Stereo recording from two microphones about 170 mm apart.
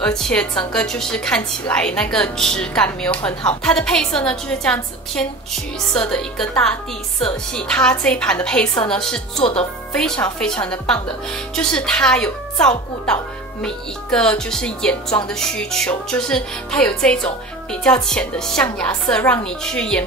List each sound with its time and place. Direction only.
0.0 s a woman's voice: 5° left (ahead or behind)
5.9 s a woman's voice: 5° left (ahead or behind)
9.4 s speech: 35° left (ahead or behind)
9.9 s a woman's voice: 5° left (ahead or behind)